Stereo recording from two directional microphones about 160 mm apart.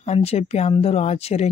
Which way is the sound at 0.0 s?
40° left (ahead or behind).